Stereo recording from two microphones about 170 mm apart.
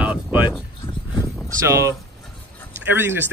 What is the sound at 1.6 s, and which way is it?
Speech, 20° right (ahead or behind).